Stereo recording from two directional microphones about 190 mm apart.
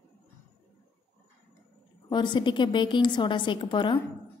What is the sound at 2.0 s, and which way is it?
A woman's voice, 25° left (ahead or behind).